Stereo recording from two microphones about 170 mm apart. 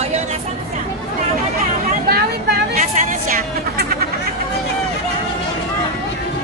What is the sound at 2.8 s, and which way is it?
Music, 50° right (ahead or behind).